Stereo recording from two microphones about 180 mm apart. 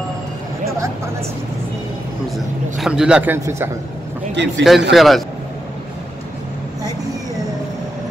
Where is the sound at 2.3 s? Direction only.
Centre (ahead or behind).